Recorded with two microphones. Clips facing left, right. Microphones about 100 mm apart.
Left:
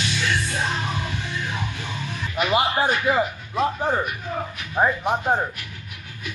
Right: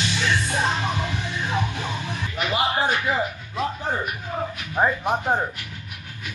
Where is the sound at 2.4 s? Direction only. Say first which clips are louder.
Left 4 dB; 15° left (ahead or behind).